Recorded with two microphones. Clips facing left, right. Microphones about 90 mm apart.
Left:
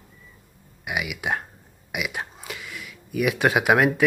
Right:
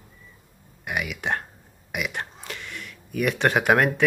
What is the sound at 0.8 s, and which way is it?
Speech, 5° left (ahead or behind).